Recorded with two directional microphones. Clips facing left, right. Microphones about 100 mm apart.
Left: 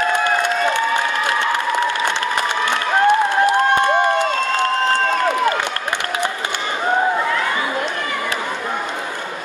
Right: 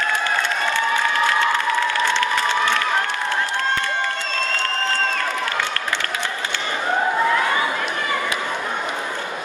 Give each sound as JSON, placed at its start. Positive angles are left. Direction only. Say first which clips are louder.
{"t": 2.1, "sound": "applause", "louder": "even", "side_deg": 15}
{"t": 4.0, "sound": "crowd", "louder": "left 8 dB", "side_deg": 20}